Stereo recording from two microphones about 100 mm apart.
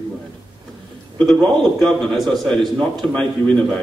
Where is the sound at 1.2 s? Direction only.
Centre (ahead or behind).